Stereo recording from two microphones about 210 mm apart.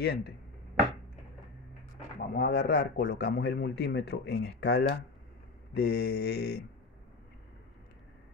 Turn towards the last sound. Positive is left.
turn(degrees=50)  # may be behind; listen again after turning